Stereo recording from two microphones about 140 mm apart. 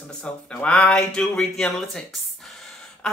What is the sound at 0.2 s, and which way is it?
Speech, 10° left (ahead or behind).